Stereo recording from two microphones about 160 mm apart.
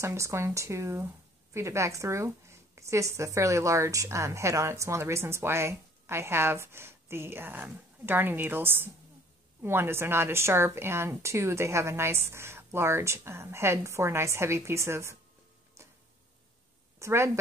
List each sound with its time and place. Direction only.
0.0 s a woman's voice: 15° right (ahead or behind)
17.0 s a woman's voice: 15° right (ahead or behind)